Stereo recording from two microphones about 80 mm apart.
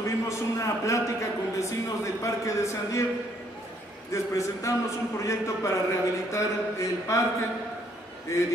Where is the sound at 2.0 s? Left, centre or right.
Left.